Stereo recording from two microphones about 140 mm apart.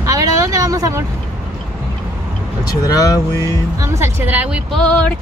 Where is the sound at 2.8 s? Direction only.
25° left (ahead or behind).